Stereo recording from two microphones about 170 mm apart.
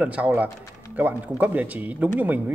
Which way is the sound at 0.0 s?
10° right (ahead or behind).